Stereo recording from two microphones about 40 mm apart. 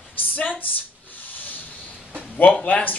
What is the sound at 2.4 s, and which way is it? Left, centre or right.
Speech, left.